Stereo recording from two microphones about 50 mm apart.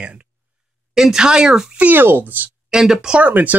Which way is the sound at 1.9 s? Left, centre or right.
Right.